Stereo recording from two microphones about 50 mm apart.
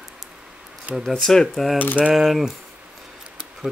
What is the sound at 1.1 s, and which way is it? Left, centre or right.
Speech, centre.